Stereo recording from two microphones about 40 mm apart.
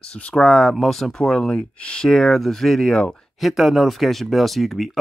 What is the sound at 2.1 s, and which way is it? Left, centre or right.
Speech, centre.